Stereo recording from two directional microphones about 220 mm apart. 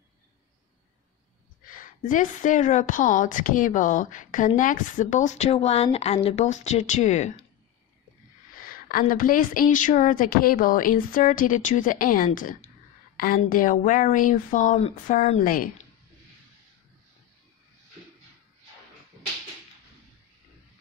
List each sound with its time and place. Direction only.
1.7 s speech: 35° left (ahead or behind)
8.5 s a sound: 40° left (ahead or behind)
9.1 s speech: 40° left (ahead or behind)